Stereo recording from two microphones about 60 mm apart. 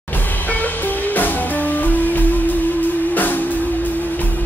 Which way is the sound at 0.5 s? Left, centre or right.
Left.